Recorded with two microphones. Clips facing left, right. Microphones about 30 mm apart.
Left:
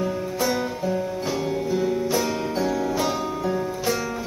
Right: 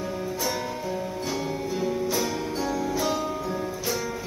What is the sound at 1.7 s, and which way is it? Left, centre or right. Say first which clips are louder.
Music: left 5 dB; centre.